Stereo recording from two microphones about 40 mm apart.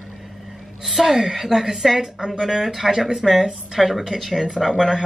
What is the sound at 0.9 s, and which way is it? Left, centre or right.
A woman's voice, centre.